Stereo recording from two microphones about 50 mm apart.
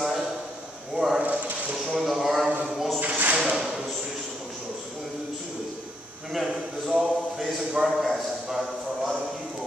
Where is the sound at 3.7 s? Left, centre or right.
Centre.